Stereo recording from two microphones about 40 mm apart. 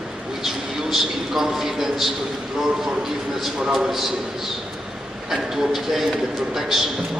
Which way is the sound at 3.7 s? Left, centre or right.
Centre.